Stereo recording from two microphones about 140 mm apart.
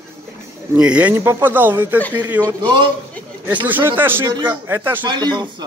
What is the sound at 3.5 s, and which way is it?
Speech, 10° right (ahead or behind).